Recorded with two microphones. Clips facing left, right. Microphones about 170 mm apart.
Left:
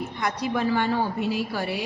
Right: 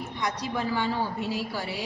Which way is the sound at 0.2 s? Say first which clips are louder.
Left 4 dB; 60° left (ahead or behind).